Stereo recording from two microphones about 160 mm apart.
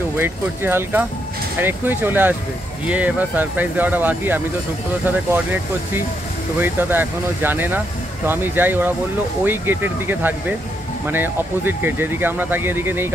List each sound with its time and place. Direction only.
0.2 s speech: 15° right (ahead or behind)